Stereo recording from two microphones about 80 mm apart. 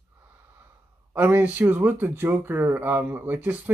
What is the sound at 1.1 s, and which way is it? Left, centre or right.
Speech, right.